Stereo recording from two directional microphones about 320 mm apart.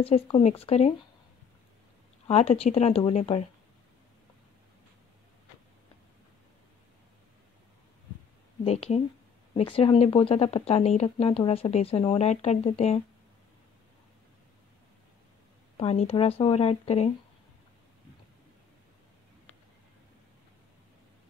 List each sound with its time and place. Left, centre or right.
0.0 s speech: centre
2.2 s speech: centre
8.6 s speech: centre
15.8 s speech: centre